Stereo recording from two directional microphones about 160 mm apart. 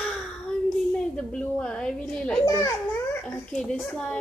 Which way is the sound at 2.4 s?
20° left (ahead or behind).